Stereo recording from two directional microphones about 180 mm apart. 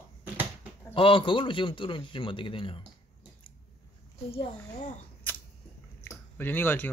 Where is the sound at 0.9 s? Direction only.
30° left (ahead or behind).